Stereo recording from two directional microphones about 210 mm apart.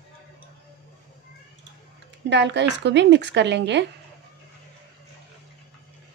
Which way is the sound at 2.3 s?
55° right (ahead or behind).